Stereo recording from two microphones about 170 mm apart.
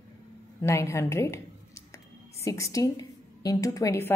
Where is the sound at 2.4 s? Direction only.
20° left (ahead or behind).